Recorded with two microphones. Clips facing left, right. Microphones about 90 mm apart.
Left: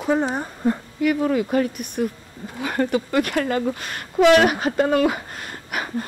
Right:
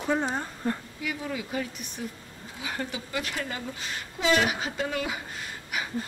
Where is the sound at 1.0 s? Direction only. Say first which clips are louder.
Left 13 dB; 55° left (ahead or behind).